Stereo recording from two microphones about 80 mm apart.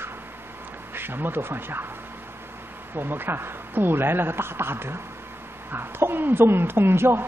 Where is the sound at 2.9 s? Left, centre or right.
Right.